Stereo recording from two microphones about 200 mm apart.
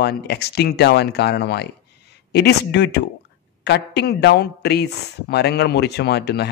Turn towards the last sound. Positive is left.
turn(degrees=55)  # may be behind; listen again after turning